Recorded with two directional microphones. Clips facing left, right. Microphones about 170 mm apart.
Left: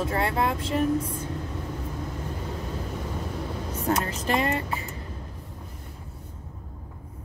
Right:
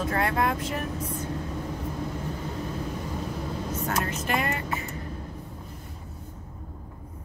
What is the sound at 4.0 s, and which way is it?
Speech, 30° left (ahead or behind).